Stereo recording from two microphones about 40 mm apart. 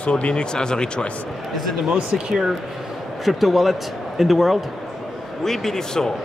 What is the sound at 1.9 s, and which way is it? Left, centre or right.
Speech, centre.